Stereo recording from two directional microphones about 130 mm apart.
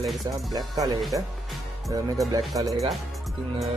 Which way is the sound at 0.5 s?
30° right (ahead or behind).